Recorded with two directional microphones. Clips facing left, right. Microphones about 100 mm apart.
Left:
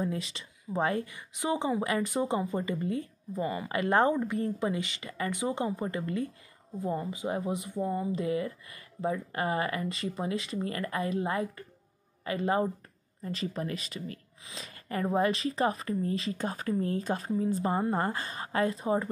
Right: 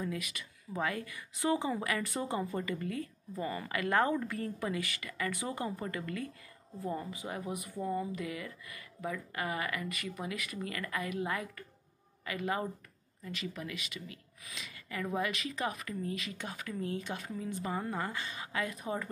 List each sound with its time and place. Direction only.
0.0 s speech: 30° left (ahead or behind)